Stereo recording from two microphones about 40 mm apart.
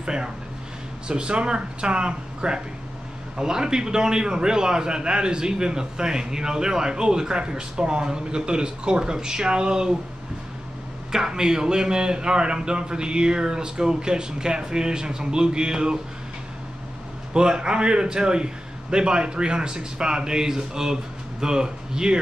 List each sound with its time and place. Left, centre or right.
0.0 s a man's voice: centre
11.1 s a man's voice: centre
17.3 s a man's voice: right